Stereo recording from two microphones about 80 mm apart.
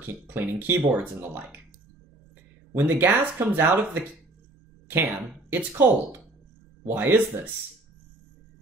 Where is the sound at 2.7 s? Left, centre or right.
Right.